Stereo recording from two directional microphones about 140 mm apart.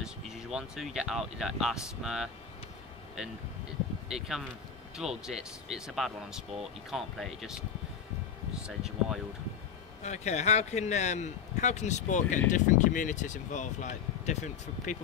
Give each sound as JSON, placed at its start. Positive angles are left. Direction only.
{"t": 0.0, "sound": "speech", "side_deg": -5}
{"t": 8.6, "sound": "speech", "side_deg": -5}
{"t": 10.0, "sound": "speech", "side_deg": 55}